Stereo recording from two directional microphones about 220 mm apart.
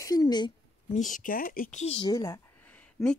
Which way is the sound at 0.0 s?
15° left (ahead or behind).